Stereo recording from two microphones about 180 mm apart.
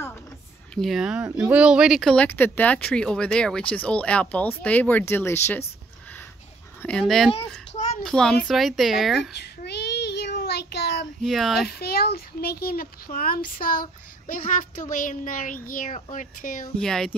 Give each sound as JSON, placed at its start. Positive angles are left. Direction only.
{"t": 0.7, "sound": "speech", "side_deg": 0}
{"t": 6.8, "sound": "a child's voice", "side_deg": 5}
{"t": 9.3, "sound": "child singing", "side_deg": 65}
{"t": 11.2, "sound": "a child's voice", "side_deg": 0}
{"t": 11.8, "sound": "a child's voice", "side_deg": 60}
{"t": 16.7, "sound": "a child's voice", "side_deg": 5}